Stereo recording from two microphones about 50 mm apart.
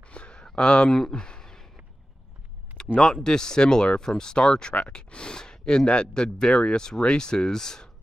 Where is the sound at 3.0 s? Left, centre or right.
Centre.